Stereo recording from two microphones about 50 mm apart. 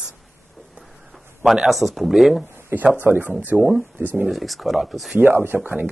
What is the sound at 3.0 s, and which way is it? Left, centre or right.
Speech, right.